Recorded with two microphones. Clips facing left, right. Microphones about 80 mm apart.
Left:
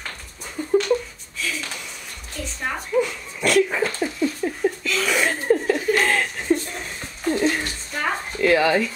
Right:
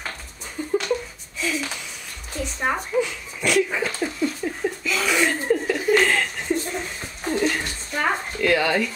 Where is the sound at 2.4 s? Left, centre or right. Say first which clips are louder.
Right 3 dB; centre.